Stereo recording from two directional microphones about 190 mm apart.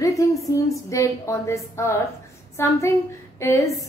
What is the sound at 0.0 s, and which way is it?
A woman's voice, 15° left (ahead or behind).